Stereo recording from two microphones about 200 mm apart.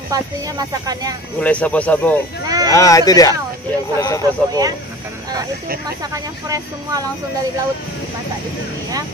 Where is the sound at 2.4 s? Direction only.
20° right (ahead or behind).